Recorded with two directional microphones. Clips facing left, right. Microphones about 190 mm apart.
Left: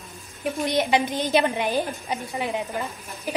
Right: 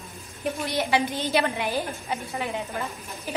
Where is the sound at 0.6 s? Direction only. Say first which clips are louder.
Left 3 dB; 20° left (ahead or behind).